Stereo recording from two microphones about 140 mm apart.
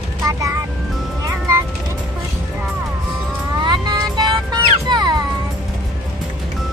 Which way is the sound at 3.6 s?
30° right (ahead or behind).